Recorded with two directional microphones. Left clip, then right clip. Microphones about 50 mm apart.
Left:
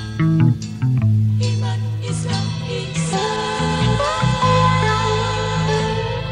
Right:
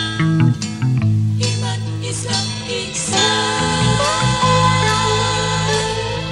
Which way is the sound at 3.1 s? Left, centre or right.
Left.